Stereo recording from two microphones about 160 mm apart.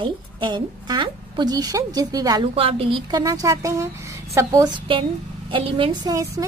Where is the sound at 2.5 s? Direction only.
35° right (ahead or behind).